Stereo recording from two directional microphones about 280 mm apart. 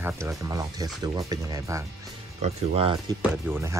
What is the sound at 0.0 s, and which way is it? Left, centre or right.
Speech, centre.